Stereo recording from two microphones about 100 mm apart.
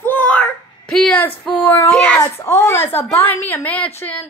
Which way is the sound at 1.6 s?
15° left (ahead or behind).